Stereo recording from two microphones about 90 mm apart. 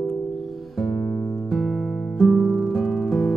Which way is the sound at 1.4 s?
5° left (ahead or behind).